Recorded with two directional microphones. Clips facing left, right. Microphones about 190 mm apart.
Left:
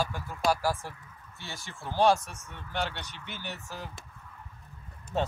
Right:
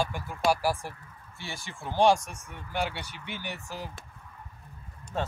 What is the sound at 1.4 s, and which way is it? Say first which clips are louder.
Speech: right 3 dB; 15° right (ahead or behind).